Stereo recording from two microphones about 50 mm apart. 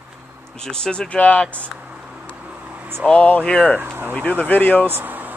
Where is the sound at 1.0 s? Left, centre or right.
Left.